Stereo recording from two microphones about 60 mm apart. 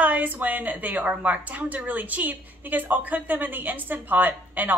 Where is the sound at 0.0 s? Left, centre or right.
Right.